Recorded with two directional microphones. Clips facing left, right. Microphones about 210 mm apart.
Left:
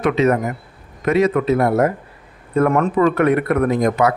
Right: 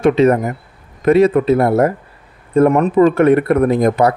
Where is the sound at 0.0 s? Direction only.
30° right (ahead or behind).